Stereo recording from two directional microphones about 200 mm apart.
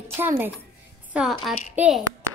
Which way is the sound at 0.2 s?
10° right (ahead or behind).